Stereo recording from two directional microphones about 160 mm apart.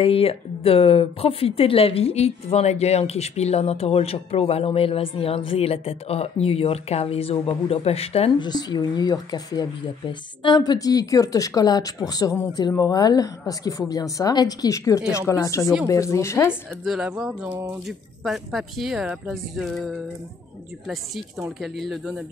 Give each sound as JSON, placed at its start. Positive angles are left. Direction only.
{"t": 0.0, "sound": "speech", "side_deg": 35}
{"t": 8.5, "sound": "speech", "side_deg": 25}
{"t": 16.8, "sound": "speech", "side_deg": -5}